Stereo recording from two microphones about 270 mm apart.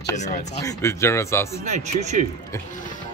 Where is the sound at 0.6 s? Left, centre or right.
Centre.